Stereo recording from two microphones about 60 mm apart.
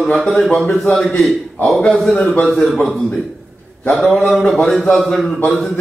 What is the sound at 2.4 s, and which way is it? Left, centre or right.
A man's voice, centre.